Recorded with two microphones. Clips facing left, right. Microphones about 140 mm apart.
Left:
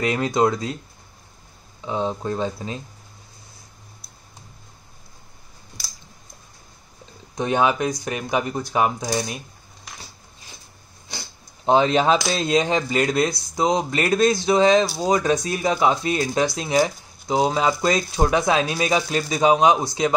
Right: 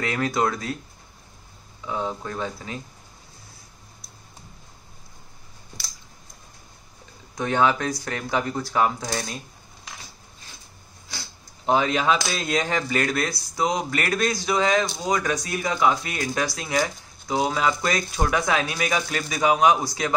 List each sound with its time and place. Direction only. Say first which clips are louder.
0.0 s speech: left 4 dB; 20° left (ahead or behind)
1.9 s speech: left 4 dB; 25° left (ahead or behind)
7.3 s speech: left 1 dB; 15° left (ahead or behind)
11.1 s speech: left 3 dB; 20° left (ahead or behind)